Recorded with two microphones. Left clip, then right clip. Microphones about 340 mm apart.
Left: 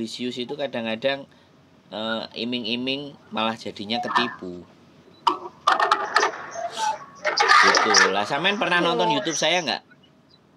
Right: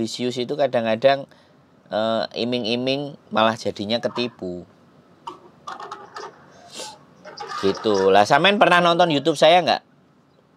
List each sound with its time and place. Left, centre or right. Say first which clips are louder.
0.0 s speech: right 5 dB; right
5.7 s a sound: left 15 dB; left
6.7 s tick-tock: left 10 dB; right
7.4 s speech: left 6 dB; left
8.1 s speech: right 8 dB; right